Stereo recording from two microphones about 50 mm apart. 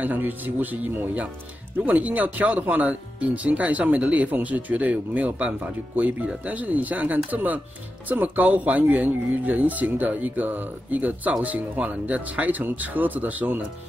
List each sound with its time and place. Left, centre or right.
0.0 s speech: right